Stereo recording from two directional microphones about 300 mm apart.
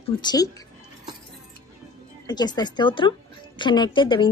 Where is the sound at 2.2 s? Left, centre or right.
Centre.